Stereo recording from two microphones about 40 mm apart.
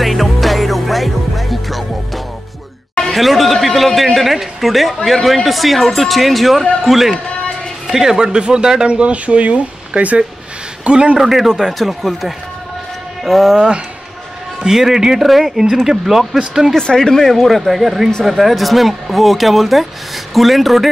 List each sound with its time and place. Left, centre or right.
0.0 s music: centre
3.0 s a man's voice: centre; by 11.1 s right
11.1 s a man's voice: centre
14.6 s speech: centre
16.7 s speech: centre
17.3 s a man's voice: centre